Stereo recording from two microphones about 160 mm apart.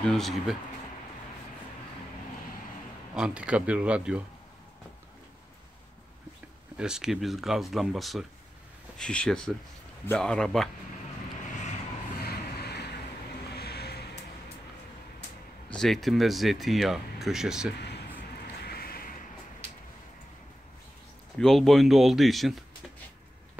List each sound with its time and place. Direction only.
0.0 s speech: centre (ahead or behind)
3.2 s speech: 5° right (ahead or behind)
6.8 s speech: 5° right (ahead or behind)
12.2 s vehicle: 80° left
15.7 s speech: centre (ahead or behind)
17.7 s a sound: 90° left
18.6 s a sound: 75° left (ahead or behind)
21.4 s speech: centre (ahead or behind)